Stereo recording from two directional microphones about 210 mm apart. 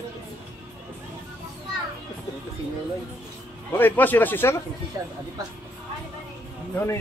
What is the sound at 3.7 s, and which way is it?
Speech, 10° left (ahead or behind).